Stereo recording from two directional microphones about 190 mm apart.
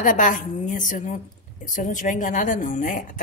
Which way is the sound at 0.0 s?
45° left (ahead or behind).